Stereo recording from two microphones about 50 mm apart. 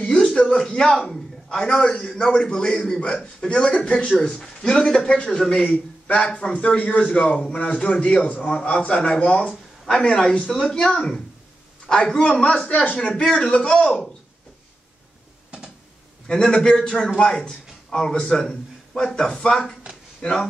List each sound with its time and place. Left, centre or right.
0.4 s a man's voice: centre
9.9 s a man's voice: centre
16.3 s a man's voice: centre
17.8 s a man's voice: centre